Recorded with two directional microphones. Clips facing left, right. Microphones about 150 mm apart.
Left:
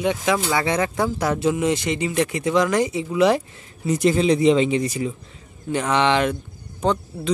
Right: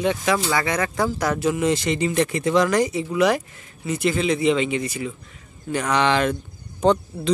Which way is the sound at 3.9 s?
40° left (ahead or behind).